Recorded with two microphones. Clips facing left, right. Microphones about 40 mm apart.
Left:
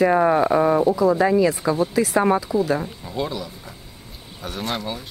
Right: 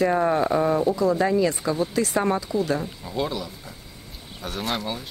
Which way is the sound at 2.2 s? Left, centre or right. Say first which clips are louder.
Left 4 dB; centre.